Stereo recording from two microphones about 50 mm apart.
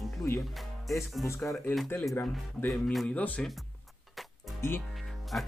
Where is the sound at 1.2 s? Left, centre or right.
Left.